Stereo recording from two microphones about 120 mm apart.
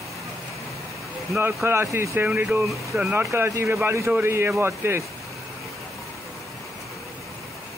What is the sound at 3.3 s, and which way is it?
Speech, 25° right (ahead or behind).